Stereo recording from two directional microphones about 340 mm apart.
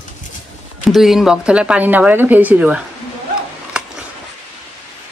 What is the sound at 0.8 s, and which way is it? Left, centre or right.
Speech, centre.